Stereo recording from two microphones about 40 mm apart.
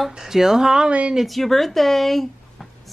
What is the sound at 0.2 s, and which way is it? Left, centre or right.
Speech, centre.